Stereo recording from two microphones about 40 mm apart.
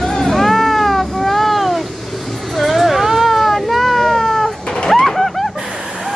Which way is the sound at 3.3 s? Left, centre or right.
Centre.